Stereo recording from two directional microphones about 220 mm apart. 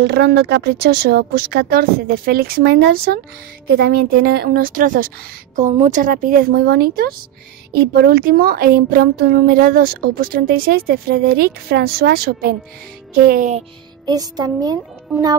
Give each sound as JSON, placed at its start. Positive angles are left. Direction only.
{"t": 0.0, "sound": "a woman's voice", "side_deg": -50}
{"t": 3.6, "sound": "a woman's voice", "side_deg": -45}
{"t": 14.0, "sound": "music", "side_deg": -15}